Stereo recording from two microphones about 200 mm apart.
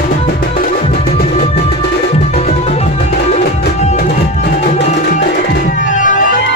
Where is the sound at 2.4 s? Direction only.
30° left (ahead or behind).